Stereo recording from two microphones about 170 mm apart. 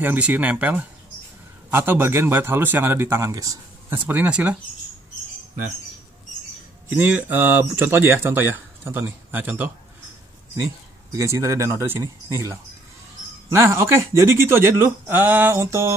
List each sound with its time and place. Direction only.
0.0 s speech: 10° right (ahead or behind)
4.1 s speech: 10° right (ahead or behind)
6.9 s speech: 10° right (ahead or behind)